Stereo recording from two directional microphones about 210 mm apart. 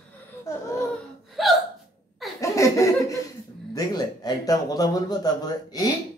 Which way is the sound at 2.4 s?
15° left (ahead or behind).